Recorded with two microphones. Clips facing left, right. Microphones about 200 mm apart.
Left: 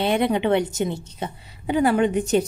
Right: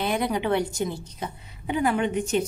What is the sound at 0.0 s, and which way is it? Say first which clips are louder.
A woman's voice: left 5 dB; 25° left (ahead or behind).